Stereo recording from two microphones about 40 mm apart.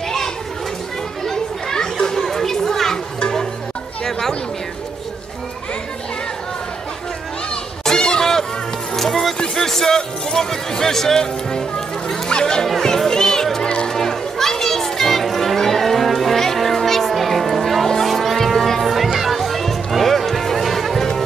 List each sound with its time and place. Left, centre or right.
1.2 s children playing: centre
4.0 s chatter: centre
7.8 s a sound: centre
8.9 s music: centre
12.6 s music: centre
13.7 s a sound: left
13.9 s children playing: centre
19.0 s music: centre